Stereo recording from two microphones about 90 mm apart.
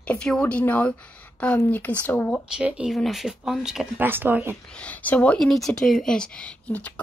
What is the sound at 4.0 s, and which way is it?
Speech, 20° right (ahead or behind).